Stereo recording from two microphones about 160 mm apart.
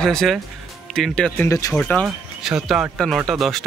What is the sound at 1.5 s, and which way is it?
Speech, 20° left (ahead or behind).